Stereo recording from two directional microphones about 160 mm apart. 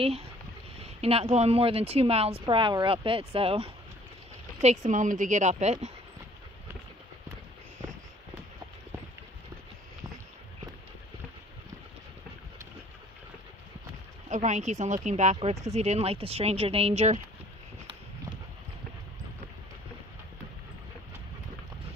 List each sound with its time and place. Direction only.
0.0 s speech: 40° right (ahead or behind)
4.6 s speech: 50° right (ahead or behind)
14.3 s speech: 50° right (ahead or behind)